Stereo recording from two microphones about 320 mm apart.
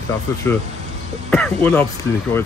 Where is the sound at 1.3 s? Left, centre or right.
Centre.